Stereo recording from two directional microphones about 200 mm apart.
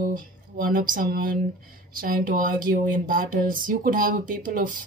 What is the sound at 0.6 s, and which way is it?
Speech, 45° right (ahead or behind).